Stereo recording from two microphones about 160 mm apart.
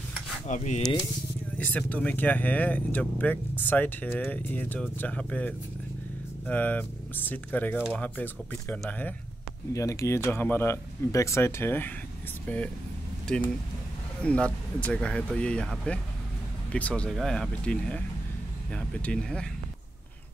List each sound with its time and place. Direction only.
0.5 s speech: 45° left (ahead or behind)
1.6 s speech: 10° left (ahead or behind)